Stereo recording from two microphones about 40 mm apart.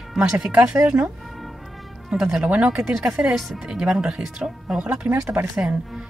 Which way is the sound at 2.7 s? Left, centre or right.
Centre.